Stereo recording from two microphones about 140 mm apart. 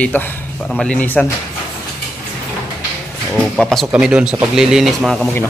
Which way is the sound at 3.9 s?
5° right (ahead or behind).